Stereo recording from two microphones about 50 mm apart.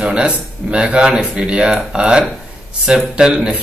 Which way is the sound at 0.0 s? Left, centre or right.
Centre.